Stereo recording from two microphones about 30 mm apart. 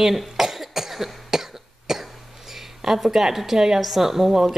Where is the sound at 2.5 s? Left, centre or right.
Centre.